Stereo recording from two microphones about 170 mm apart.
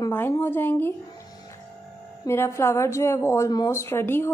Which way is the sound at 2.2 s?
15° left (ahead or behind).